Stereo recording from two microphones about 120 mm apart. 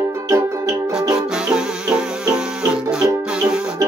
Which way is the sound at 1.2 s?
5° right (ahead or behind).